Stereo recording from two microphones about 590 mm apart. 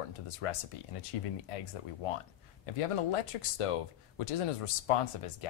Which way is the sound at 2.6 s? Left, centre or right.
Left.